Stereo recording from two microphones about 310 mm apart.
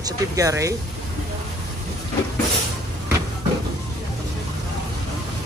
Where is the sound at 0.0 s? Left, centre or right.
Centre.